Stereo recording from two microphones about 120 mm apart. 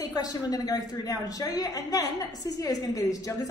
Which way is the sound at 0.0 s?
30° left (ahead or behind).